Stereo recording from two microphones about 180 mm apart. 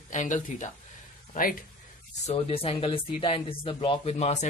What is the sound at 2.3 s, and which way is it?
Speech, 30° left (ahead or behind).